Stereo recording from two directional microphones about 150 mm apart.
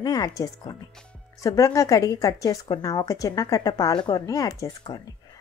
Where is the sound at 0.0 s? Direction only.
25° left (ahead or behind).